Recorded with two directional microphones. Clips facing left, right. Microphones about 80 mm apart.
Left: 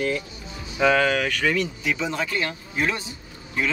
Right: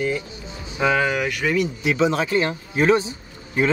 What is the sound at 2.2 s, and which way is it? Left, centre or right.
Speech, right.